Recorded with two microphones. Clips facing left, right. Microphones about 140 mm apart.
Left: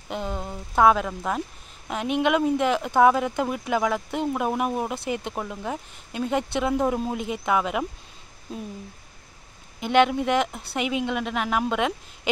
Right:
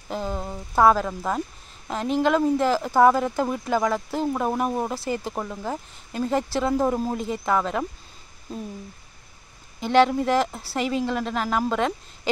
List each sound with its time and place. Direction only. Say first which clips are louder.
0.1 s speech: right 1 dB; centre (ahead or behind)
9.8 s speech: right 1 dB; 5° left (ahead or behind)